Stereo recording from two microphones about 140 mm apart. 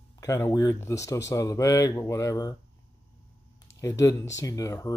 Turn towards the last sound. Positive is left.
turn(degrees=25)  # may be behind; listen again after turning